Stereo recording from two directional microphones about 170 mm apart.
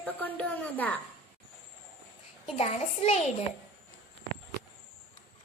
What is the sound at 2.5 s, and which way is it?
Speech, 40° left (ahead or behind).